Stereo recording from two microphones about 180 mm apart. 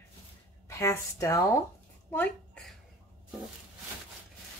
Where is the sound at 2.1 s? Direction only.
10° left (ahead or behind).